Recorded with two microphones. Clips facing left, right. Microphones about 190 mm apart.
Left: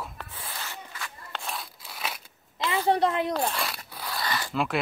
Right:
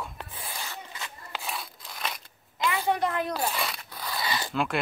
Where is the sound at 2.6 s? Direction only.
30° left (ahead or behind).